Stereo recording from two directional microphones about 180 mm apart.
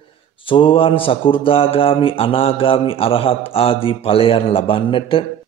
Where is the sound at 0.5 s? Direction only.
30° left (ahead or behind).